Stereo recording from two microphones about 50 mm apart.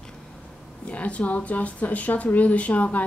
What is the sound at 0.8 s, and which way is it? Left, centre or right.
Speech, left.